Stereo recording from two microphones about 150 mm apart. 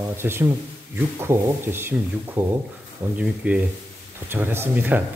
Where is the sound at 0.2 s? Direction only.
15° right (ahead or behind).